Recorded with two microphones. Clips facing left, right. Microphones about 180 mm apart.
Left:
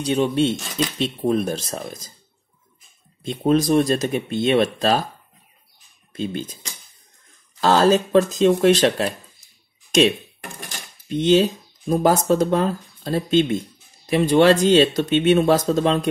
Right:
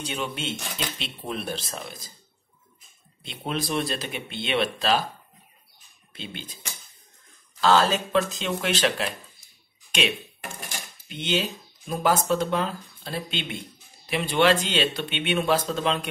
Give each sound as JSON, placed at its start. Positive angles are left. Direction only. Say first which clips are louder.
{"t": 0.0, "sound": "speech", "louder": "left 12 dB", "side_deg": 40}
{"t": 3.3, "sound": "speech", "louder": "left 12 dB", "side_deg": 45}
{"t": 6.1, "sound": "speech", "louder": "left 12 dB", "side_deg": 45}
{"t": 7.6, "sound": "speech", "louder": "left 5 dB", "side_deg": 40}
{"t": 9.8, "sound": "a sound", "louder": "left 11 dB", "side_deg": 40}
{"t": 11.1, "sound": "speech", "louder": "left 11 dB", "side_deg": 40}